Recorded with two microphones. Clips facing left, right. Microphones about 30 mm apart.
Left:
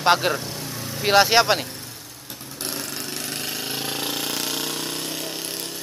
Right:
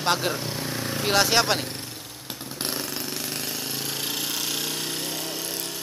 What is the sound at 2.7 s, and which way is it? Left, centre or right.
Jackhammer, centre.